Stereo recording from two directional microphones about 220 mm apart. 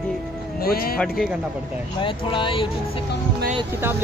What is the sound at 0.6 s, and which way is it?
Speech, 45° left (ahead or behind).